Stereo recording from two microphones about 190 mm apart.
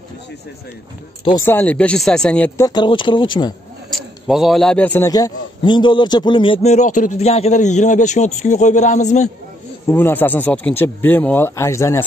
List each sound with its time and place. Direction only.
1.4 s speech: 10° left (ahead or behind)
2.6 s speech: 25° left (ahead or behind)
3.9 s a man's voice: centre (ahead or behind); by 9.3 s 40° left (ahead or behind)
9.8 s speech: 10° left (ahead or behind)